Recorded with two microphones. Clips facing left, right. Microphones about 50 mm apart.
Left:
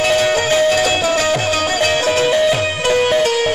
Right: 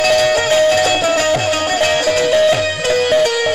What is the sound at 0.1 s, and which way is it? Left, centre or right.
Music, centre.